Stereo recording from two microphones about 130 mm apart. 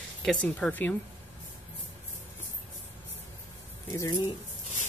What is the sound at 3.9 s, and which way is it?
Speech, 25° left (ahead or behind).